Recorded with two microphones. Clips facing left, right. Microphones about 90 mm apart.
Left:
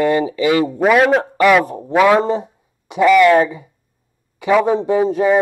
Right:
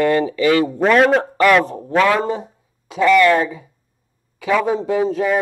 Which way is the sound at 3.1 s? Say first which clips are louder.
Left 3 dB; 15° left (ahead or behind).